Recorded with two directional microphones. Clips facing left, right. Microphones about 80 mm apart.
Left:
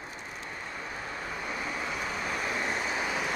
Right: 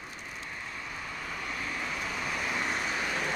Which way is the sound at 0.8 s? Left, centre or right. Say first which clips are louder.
Left 3 dB; left.